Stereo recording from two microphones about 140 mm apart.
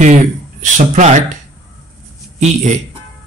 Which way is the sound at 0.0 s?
65° right (ahead or behind).